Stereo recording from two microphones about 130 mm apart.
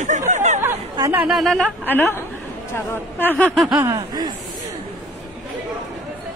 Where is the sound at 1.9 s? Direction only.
15° left (ahead or behind).